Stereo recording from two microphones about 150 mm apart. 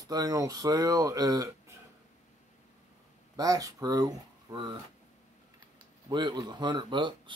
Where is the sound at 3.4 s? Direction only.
25° right (ahead or behind).